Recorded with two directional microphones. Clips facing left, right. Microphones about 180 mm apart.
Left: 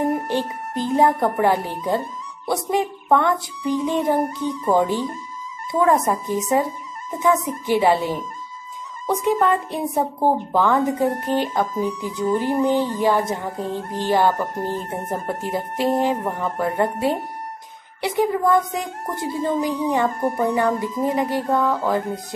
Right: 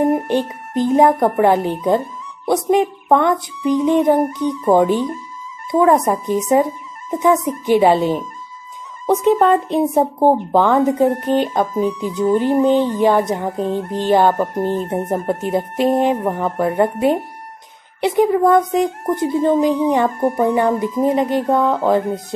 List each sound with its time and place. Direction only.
0.0 s music: 20° right (ahead or behind)